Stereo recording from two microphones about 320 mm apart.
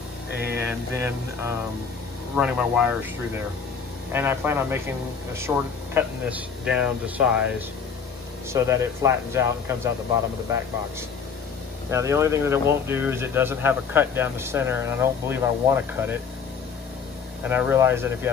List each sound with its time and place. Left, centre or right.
0.6 s speech: centre
4.1 s speech: centre
11.9 s speech: centre
17.4 s speech: centre